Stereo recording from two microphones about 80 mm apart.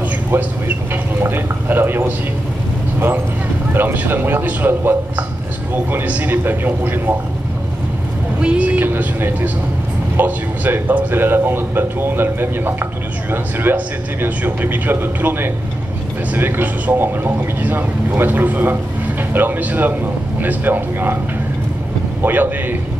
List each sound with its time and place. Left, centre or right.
1.2 s a man's voice: right
3.7 s a man's voice: right
8.4 s a man's voice: centre
22.2 s a man's voice: right